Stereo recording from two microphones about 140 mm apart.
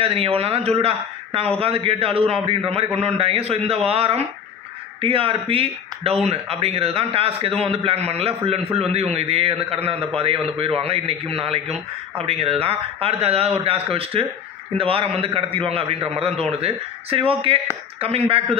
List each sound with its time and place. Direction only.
0.0 s a man's voice: 45° right (ahead or behind)